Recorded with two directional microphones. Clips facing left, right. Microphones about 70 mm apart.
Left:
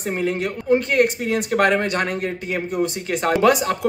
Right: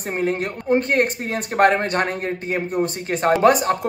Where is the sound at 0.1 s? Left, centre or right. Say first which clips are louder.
Right 1 dB; right.